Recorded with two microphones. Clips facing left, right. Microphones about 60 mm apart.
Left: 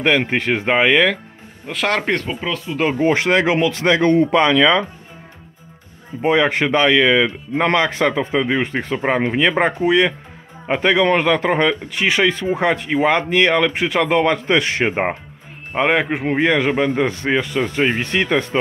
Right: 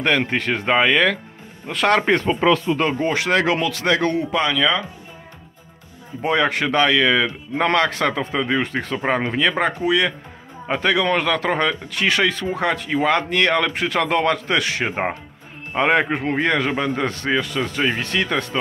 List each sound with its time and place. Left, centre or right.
0.2 s speech: left
1.7 s speech: centre
2.4 s speech: right
2.9 s speech: left
4.2 s speech: left
6.2 s speech: left
15.8 s speech: centre
16.3 s speech: centre
17.6 s speech: left